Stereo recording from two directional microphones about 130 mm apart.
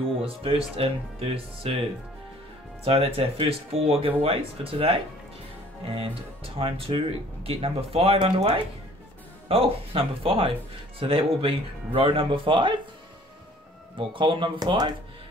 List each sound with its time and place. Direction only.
0.2 s speech: 45° right (ahead or behind)
13.9 s speech: 40° right (ahead or behind)